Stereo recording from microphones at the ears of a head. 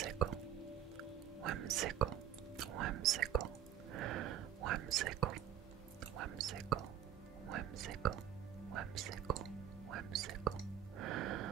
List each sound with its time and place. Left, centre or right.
1.4 s music: right
2.6 s whispering: right
7.4 s music: right